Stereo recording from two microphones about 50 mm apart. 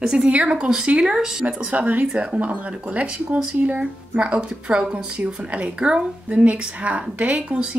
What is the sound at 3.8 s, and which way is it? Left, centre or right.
Speech, right.